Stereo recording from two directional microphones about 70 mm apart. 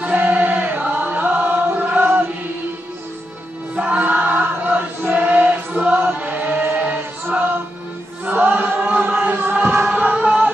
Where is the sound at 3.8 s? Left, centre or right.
Right.